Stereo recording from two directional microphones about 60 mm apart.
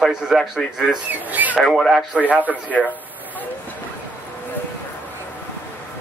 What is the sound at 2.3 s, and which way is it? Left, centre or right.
Speech, right.